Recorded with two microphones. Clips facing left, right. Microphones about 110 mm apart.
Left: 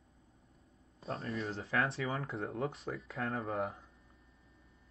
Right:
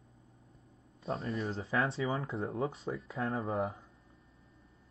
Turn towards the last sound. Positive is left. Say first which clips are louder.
# right 2 dB
turn(degrees=-30)  # may be behind; listen again after turning